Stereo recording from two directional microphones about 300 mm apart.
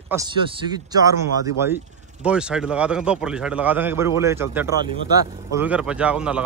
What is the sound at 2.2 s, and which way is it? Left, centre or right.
A man's voice, centre.